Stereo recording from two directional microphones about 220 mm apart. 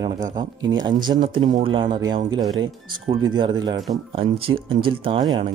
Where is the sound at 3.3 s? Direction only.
20° right (ahead or behind).